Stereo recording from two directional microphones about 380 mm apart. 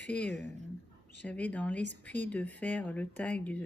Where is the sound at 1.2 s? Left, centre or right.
Centre.